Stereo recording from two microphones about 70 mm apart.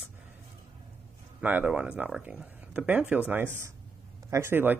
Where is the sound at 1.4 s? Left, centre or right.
Right.